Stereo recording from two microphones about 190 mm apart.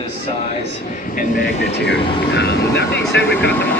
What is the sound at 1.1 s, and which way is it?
Speech, 55° left (ahead or behind).